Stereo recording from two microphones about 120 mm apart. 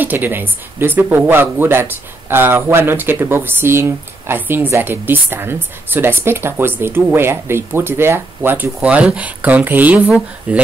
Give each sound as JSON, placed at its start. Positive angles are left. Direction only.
{"t": 0.0, "sound": "speech", "side_deg": -15}